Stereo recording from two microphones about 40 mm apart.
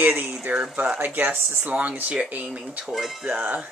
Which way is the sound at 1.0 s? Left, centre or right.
Right.